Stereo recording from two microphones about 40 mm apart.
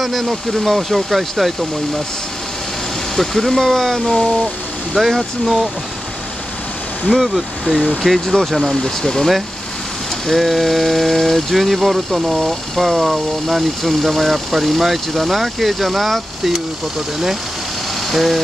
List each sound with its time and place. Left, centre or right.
0.0 s speech: centre
3.2 s speech: centre
7.1 s speech: centre
7.6 s speech: right
8.0 s speech: centre
8.6 s speech: centre
10.2 s speech: centre
18.1 s speech: centre